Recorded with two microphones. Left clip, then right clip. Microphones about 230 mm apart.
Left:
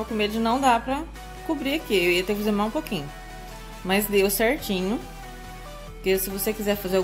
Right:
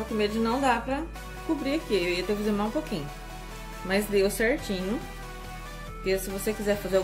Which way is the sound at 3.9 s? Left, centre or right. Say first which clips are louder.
Left 3 dB; left.